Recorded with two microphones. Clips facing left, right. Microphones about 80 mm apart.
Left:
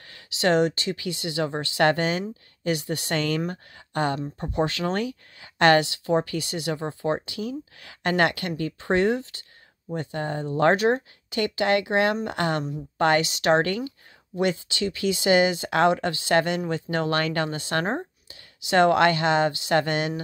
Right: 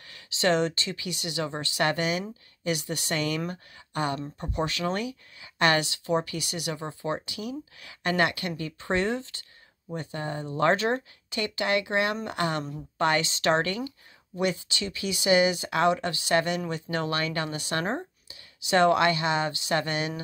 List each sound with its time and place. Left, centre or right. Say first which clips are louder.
0.1 s speech: left 3 dB; left
4.4 s a woman's voice: left 5 dB; left
5.8 s speech: left 4 dB; left
8.8 s speech: left 5 dB; left
9.9 s speech: left 4 dB; left
10.6 s speech: left 4 dB; left
11.3 s speech: left 4 dB; left